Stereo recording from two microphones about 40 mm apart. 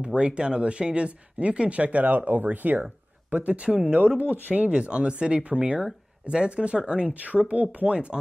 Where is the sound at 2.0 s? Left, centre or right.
Right.